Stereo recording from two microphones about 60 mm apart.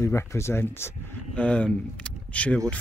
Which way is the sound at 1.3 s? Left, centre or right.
Left.